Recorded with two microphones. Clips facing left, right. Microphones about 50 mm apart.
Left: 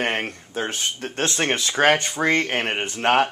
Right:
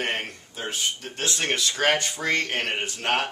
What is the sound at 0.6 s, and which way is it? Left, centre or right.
Speech, left.